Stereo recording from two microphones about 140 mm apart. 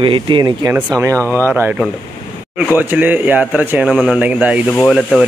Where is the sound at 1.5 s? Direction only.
10° right (ahead or behind).